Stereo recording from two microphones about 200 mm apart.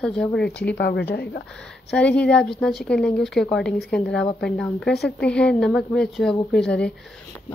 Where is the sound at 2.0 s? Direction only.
5° left (ahead or behind).